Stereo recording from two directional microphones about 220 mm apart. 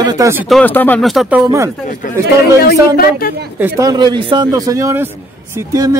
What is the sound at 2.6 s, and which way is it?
Speech, 45° left (ahead or behind).